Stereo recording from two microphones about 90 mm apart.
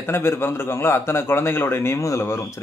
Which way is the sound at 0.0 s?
30° left (ahead or behind).